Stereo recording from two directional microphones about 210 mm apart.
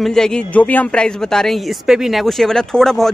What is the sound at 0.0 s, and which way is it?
Speech, centre (ahead or behind).